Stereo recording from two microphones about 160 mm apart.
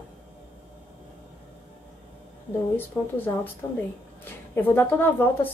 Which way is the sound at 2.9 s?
20° left (ahead or behind).